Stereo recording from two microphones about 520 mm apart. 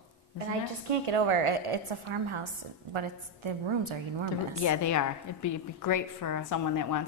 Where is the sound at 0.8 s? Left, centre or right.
Right.